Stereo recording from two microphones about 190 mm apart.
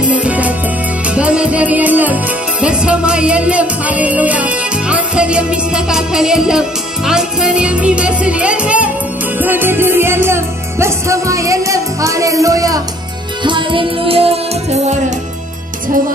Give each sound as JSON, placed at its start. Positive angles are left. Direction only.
{"t": 0.0, "sound": "music", "side_deg": -5}